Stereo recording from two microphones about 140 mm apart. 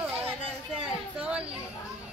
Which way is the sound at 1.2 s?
10° right (ahead or behind).